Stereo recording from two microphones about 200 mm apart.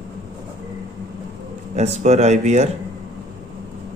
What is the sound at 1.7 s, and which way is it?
Speech, 35° right (ahead or behind).